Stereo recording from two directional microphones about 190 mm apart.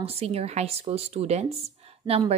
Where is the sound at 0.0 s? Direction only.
30° right (ahead or behind).